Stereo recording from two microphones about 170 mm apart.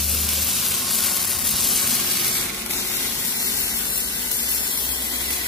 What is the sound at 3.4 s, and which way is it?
Water, 20° right (ahead or behind).